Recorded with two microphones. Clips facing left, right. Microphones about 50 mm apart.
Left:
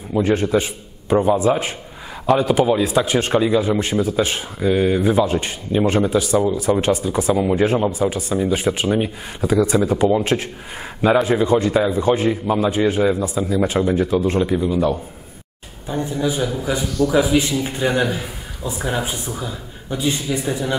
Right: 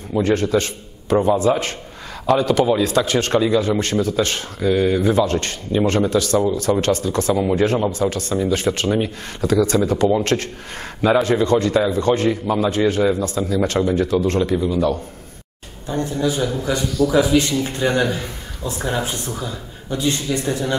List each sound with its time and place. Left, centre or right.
0.1 s a man's voice: centre